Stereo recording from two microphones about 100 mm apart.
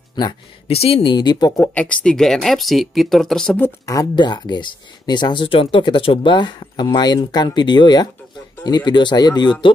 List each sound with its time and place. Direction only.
0.7 s speech: 75° left (ahead or behind)
1.1 s speech: 45° left (ahead or behind)
1.6 s speech: 15° left (ahead or behind)
3.8 s speech: 35° left (ahead or behind)
4.1 s speech: 45° left (ahead or behind)